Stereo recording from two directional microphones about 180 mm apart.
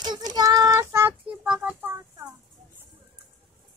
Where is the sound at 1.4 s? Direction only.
5° right (ahead or behind).